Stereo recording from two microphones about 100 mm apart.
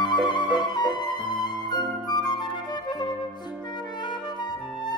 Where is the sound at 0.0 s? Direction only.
50° left (ahead or behind).